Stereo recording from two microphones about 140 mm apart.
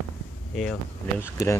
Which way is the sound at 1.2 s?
20° left (ahead or behind).